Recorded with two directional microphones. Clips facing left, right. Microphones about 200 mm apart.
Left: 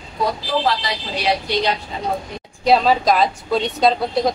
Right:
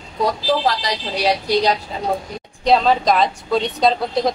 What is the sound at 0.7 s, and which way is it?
Speech, 40° right (ahead or behind).